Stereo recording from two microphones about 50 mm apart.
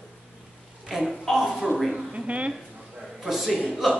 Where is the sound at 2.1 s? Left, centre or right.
Right.